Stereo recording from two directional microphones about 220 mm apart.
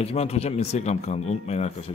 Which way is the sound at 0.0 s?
30° left (ahead or behind).